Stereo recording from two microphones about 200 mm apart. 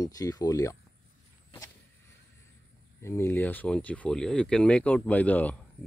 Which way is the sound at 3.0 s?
15° left (ahead or behind).